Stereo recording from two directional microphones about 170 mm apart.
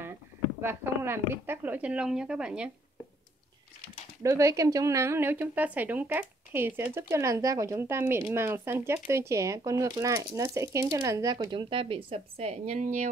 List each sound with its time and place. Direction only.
0.6 s a woman's voice: 15° right (ahead or behind)
4.2 s a woman's voice: 20° right (ahead or behind); by 13.1 s 45° right (ahead or behind)